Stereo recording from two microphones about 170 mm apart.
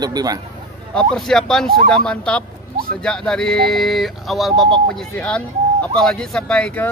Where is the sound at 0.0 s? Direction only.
25° right (ahead or behind).